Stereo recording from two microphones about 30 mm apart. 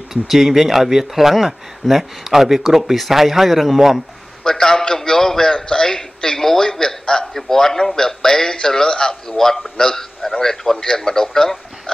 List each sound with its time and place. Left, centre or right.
0.1 s speech: centre
4.4 s a man's voice: centre